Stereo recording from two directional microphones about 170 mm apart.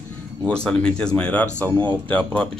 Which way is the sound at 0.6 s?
5° left (ahead or behind).